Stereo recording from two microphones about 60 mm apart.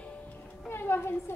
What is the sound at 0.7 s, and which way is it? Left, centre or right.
Speech, left.